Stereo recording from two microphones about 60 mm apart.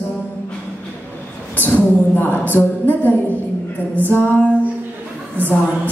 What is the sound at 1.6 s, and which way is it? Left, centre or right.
A woman's voice, left.